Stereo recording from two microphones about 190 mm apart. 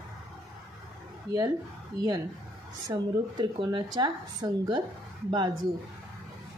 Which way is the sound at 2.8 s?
25° right (ahead or behind).